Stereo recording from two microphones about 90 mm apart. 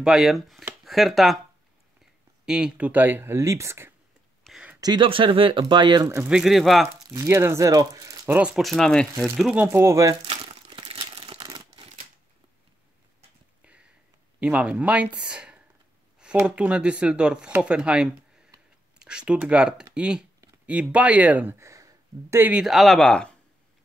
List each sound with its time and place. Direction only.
0.0 s speech: 5° right (ahead or behind)
2.4 s speech: 10° right (ahead or behind); by 3.9 s 30° right (ahead or behind)
4.7 s speech: 45° right (ahead or behind)
5.0 s speech: 75° right (ahead or behind); by 6.0 s 60° right (ahead or behind)
6.2 s speech: 5° right (ahead or behind)
7.2 s speech: 30° right (ahead or behind)
8.3 s speech: 15° right (ahead or behind)
8.5 s speech: centre (ahead or behind)
9.6 s speech: 25° right (ahead or behind)
10.2 s crumpling: 80° right
14.4 s speech: 15° right (ahead or behind)
21.5 s a sound: 35° right (ahead or behind)
22.4 s speech: 15° right (ahead or behind)
22.7 s speech: centre (ahead or behind)